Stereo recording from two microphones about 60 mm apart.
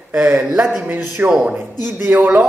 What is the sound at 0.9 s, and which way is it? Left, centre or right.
Speech, right.